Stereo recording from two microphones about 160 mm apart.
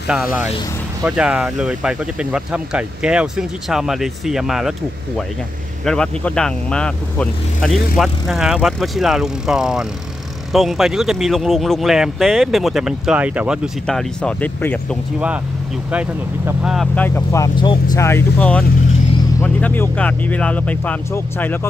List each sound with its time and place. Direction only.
0.1 s speech: 10° right (ahead or behind)
13.8 s speech: 5° left (ahead or behind)
15.9 s speech: 10° right (ahead or behind)
16.9 s speech: 10° left (ahead or behind)
17.6 s speech: 25° left (ahead or behind); by 21.5 s 10° left (ahead or behind)